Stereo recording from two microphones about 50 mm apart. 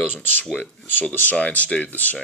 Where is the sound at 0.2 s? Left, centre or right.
Left.